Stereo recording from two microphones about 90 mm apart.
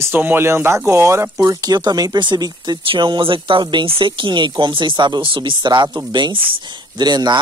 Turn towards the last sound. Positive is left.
turn(degrees=-50)  # may be behind; listen again after turning